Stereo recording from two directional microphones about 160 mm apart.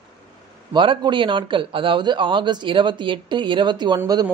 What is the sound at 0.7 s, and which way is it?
Speech, 30° right (ahead or behind).